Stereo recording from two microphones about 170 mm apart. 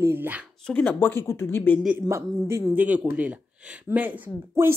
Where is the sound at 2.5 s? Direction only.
10° right (ahead or behind).